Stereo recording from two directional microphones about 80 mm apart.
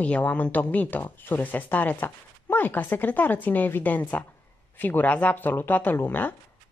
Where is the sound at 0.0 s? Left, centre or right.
Centre.